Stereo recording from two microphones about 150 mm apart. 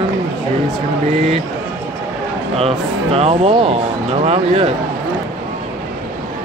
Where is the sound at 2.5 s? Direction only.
40° right (ahead or behind).